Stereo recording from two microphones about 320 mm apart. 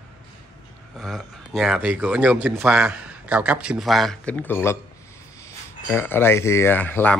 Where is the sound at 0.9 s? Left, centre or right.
Centre.